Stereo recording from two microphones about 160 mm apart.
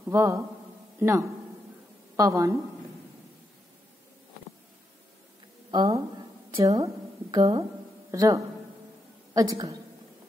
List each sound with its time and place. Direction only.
0.1 s speech: 20° right (ahead or behind)
5.7 s a woman's voice: 25° right (ahead or behind)